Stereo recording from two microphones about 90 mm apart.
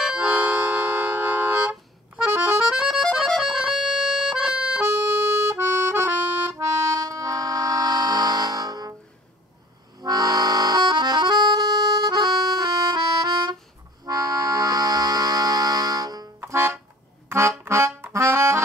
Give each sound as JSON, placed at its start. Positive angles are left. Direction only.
{"t": 0.2, "sound": "music", "side_deg": -20}
{"t": 2.3, "sound": "accordion", "side_deg": -25}
{"t": 2.7, "sound": "accordion", "side_deg": -5}
{"t": 3.0, "sound": "music", "side_deg": 0}
{"t": 4.7, "sound": "accordion", "side_deg": -30}
{"t": 6.8, "sound": "vehicle horn", "side_deg": -40}
{"t": 9.9, "sound": "accordion", "side_deg": -45}
{"t": 14.0, "sound": "music", "side_deg": -40}
{"t": 16.4, "sound": "music", "side_deg": -25}
{"t": 17.3, "sound": "accordion", "side_deg": -30}